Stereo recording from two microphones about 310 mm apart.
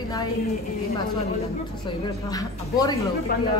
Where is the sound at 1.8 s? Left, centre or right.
Centre.